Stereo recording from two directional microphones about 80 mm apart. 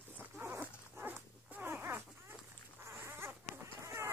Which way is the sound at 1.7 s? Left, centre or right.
Right.